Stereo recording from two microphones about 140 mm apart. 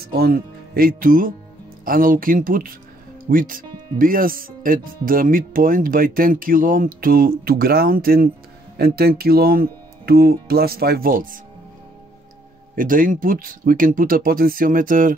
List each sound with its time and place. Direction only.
0.0 s speech: 90° right
12.7 s speech: 80° right